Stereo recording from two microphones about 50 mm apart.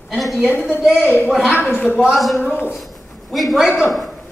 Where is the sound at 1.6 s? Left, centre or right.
Left.